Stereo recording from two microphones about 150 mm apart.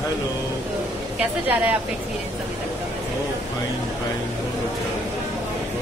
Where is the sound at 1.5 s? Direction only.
10° right (ahead or behind).